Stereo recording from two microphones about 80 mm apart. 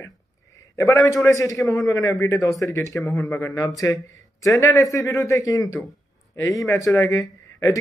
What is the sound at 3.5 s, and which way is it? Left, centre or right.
A man's voice, left.